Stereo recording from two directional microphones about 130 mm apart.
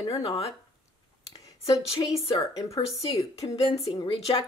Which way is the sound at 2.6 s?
25° left (ahead or behind).